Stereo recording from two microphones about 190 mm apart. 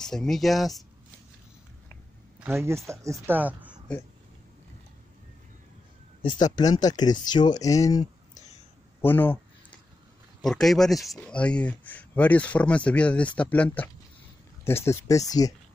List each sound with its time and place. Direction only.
0.0 s speech: 5° left (ahead or behind)
2.4 s speech: 15° right (ahead or behind)
6.2 s speech: 25° left (ahead or behind)
9.0 s a sound: 10° left (ahead or behind)
10.4 s speech: centre (ahead or behind); by 15.5 s 20° left (ahead or behind)